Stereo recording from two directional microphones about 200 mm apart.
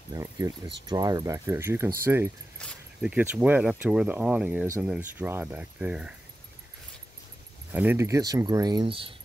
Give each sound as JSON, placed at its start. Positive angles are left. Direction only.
{"t": 0.1, "sound": "speech", "side_deg": -15}
{"t": 2.6, "sound": "keys jangling", "side_deg": 5}
{"t": 3.1, "sound": "speech", "side_deg": -10}
{"t": 7.7, "sound": "speech", "side_deg": -10}